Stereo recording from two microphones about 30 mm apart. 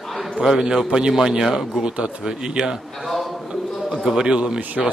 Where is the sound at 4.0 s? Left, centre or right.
Centre.